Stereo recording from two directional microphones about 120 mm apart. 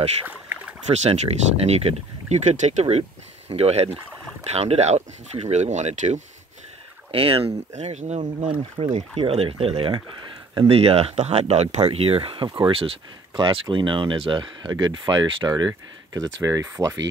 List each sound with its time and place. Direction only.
0.3 s rowboat: 15° right (ahead or behind)
0.8 s speech: 70° right (ahead or behind)
3.0 s speech: 55° right (ahead or behind); by 6.2 s 80° right
7.1 s speech: 50° right (ahead or behind); by 8.3 s 75° right (ahead or behind)
8.4 s speech: 45° right (ahead or behind); by 16.9 s 30° right (ahead or behind)